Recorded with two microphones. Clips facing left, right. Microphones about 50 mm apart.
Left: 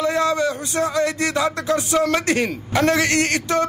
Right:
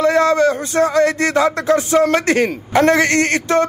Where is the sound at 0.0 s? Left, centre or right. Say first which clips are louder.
Right 6 dB; right.